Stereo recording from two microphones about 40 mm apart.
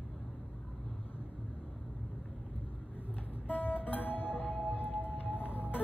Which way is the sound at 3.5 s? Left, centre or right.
Left.